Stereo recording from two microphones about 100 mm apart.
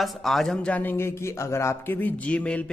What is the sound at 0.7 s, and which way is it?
Speech, 20° left (ahead or behind).